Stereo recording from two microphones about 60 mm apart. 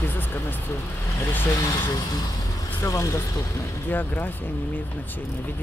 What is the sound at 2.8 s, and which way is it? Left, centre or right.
Speech, left.